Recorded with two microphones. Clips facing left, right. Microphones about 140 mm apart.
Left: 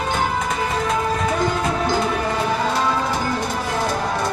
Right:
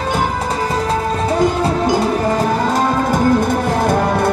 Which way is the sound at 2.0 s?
40° right (ahead or behind).